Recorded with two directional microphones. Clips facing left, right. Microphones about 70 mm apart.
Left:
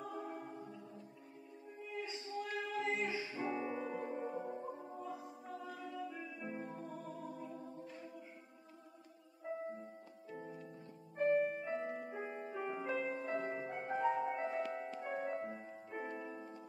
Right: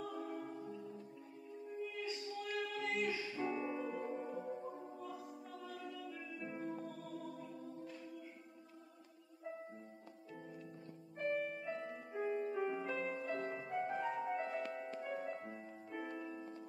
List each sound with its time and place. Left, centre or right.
0.0 s music: centre
1.9 s music: left
10.3 s music: left
15.4 s music: centre